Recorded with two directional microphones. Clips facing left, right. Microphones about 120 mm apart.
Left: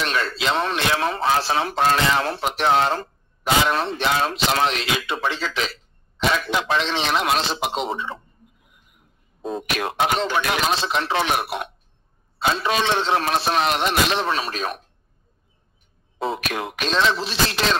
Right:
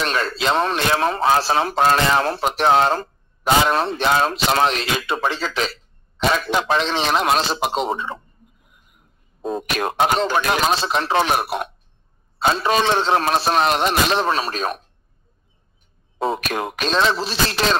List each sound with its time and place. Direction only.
0.0 s a man's voice: 40° right (ahead or behind)
9.4 s a man's voice: 45° right (ahead or behind)
16.2 s a man's voice: 45° right (ahead or behind)